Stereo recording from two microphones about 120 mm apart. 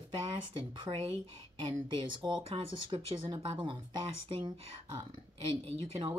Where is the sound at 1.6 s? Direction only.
40° right (ahead or behind).